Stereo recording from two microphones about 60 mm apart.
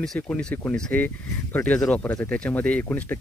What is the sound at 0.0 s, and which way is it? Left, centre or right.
Speech, centre.